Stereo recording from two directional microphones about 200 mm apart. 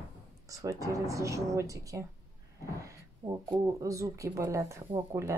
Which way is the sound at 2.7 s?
15° right (ahead or behind).